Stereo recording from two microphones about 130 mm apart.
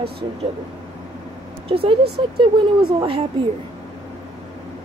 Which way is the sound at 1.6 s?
45° right (ahead or behind).